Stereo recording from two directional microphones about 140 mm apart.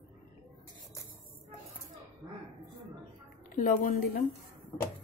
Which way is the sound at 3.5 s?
75° left (ahead or behind).